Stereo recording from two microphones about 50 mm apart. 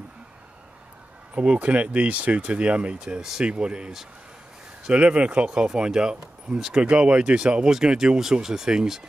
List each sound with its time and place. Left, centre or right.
1.3 s speech: right